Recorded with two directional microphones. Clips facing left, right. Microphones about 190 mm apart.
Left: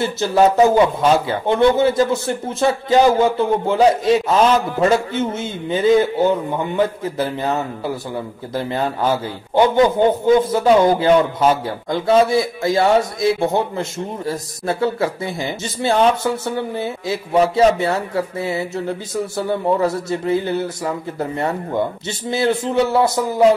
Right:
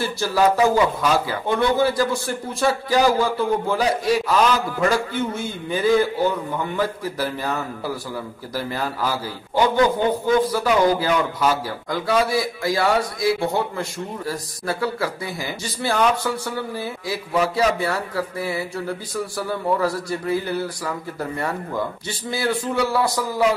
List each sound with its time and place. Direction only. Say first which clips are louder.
0.0 s a man's voice: left 4 dB; 20° left (ahead or behind)